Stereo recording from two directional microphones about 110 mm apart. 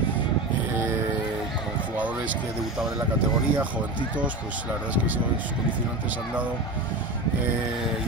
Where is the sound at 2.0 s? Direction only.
15° right (ahead or behind).